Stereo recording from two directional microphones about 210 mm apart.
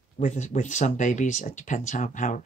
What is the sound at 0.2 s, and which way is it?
Speech, 35° left (ahead or behind).